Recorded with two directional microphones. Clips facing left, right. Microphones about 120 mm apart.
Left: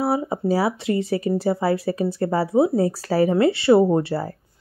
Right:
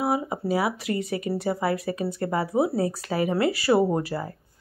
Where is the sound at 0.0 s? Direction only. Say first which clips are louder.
Left 4 dB; 30° left (ahead or behind).